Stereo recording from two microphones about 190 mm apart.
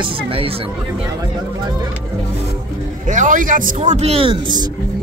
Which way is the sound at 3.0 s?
40° right (ahead or behind).